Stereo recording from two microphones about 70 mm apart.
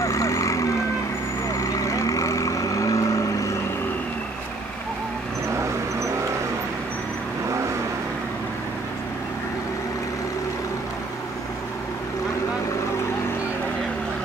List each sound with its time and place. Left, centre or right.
0.0 s vehicle: left